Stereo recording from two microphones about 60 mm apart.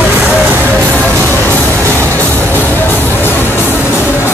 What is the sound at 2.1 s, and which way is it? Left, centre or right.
Music, left.